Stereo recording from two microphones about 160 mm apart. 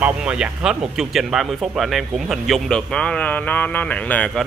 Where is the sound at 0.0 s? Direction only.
5° right (ahead or behind).